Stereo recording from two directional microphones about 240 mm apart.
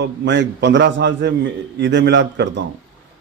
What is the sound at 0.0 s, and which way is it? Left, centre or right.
A man's voice, right.